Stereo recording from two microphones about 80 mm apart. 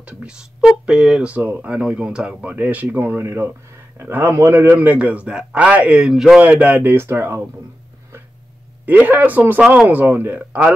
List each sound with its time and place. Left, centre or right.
0.0 s a man's voice: centre
6.8 s speech: right
8.8 s speech: right